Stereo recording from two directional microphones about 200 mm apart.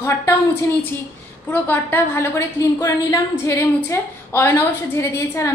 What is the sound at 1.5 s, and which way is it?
A woman's voice, 10° left (ahead or behind).